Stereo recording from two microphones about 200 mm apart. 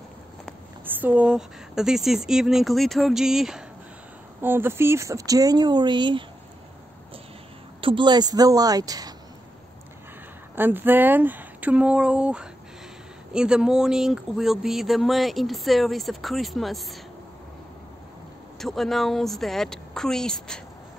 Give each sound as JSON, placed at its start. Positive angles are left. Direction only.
{"t": 1.0, "sound": "speech", "side_deg": -5}
{"t": 7.8, "sound": "a woman's voice", "side_deg": -25}
{"t": 10.5, "sound": "speech", "side_deg": -10}
{"t": 18.6, "sound": "speech", "side_deg": 0}